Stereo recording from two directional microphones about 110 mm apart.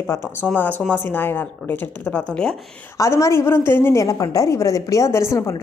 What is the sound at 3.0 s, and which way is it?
A woman's voice, 25° left (ahead or behind).